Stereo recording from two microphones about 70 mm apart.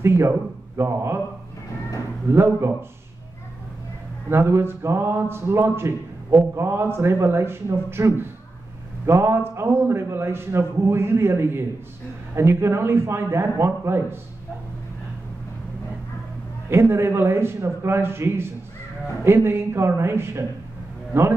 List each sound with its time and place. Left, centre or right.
0.0 s a man's voice: right
2.3 s a man's voice: right
4.3 s a man's voice: right
16.7 s a man's voice: right